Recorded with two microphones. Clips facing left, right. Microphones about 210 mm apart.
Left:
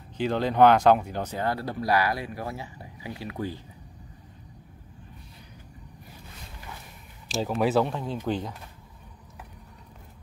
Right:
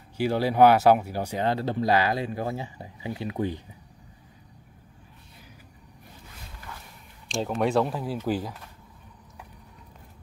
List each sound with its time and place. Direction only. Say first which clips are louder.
0.2 s speech: right 1 dB; 10° right (ahead or behind)
7.2 s speech: even; 5° left (ahead or behind)